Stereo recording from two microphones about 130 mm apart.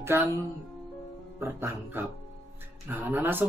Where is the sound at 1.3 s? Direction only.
15° right (ahead or behind).